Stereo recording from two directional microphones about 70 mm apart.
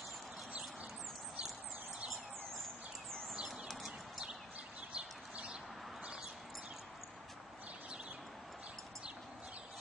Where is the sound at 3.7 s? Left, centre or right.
Centre.